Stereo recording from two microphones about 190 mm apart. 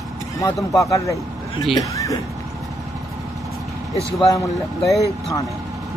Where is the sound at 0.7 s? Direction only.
15° left (ahead or behind).